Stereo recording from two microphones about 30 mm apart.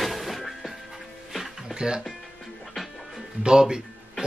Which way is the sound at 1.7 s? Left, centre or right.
Right.